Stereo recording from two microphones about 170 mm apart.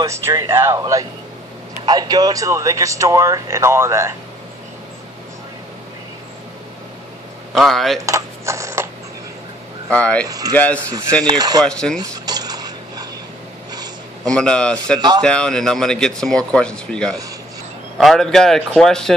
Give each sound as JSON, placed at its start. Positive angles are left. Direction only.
{"t": 0.0, "sound": "speech", "side_deg": -20}
{"t": 7.5, "sound": "speech", "side_deg": 0}
{"t": 8.0, "sound": "a sound", "side_deg": -20}
{"t": 9.8, "sound": "speech", "side_deg": 5}
{"t": 10.2, "sound": "speech", "side_deg": -20}
{"t": 10.5, "sound": "speech", "side_deg": 10}
{"t": 11.2, "sound": "speech", "side_deg": -25}
{"t": 11.6, "sound": "speech", "side_deg": 5}
{"t": 12.0, "sound": "a sound", "side_deg": -25}
{"t": 14.2, "sound": "speech", "side_deg": 5}
{"t": 15.0, "sound": "speech", "side_deg": -25}
{"t": 15.2, "sound": "speech", "side_deg": 5}